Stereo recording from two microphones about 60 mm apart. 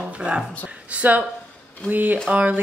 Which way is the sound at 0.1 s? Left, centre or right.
Centre.